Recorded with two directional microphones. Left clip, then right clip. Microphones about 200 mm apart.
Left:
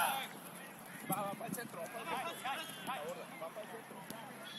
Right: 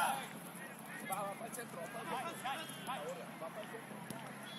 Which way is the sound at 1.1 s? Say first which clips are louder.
Left 2 dB; 25° left (ahead or behind).